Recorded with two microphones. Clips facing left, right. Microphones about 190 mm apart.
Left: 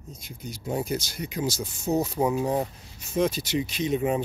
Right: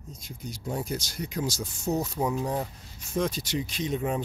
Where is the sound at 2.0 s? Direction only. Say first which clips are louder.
Left 4 dB; 20° left (ahead or behind).